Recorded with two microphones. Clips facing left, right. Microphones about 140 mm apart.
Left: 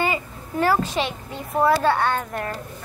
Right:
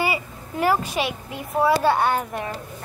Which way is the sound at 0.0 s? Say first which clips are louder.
Even; 10° right (ahead or behind).